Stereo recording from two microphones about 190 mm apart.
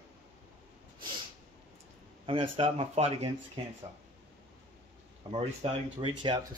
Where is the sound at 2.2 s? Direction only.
30° right (ahead or behind).